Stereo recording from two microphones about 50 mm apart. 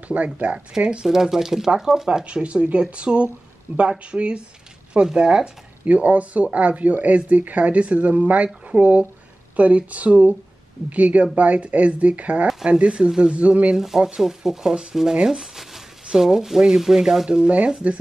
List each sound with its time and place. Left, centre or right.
0.1 s speech: right
0.7 s speech: centre
2.0 s speech: centre
5.9 s speech: right
13.7 s speech: centre
17.4 s speech: right